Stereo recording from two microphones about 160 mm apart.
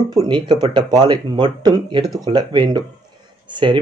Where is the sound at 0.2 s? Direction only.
30° right (ahead or behind).